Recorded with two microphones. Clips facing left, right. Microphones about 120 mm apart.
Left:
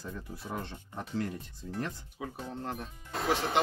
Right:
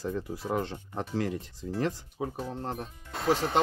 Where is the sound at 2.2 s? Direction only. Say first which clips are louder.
Right 3 dB; 35° right (ahead or behind).